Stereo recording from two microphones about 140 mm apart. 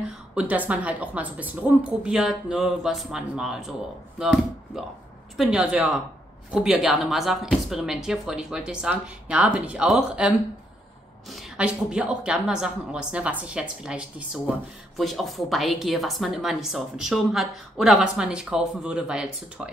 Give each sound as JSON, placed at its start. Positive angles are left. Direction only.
{"t": 0.3, "sound": "a woman's voice", "side_deg": -10}